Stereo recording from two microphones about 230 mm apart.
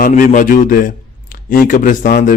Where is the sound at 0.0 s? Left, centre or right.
Left.